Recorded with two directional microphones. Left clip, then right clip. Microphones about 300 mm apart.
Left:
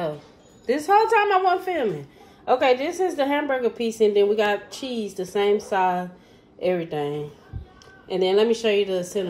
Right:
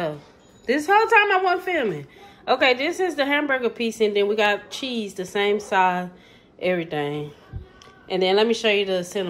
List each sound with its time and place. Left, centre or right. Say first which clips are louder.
0.7 s a woman's voice: even; centre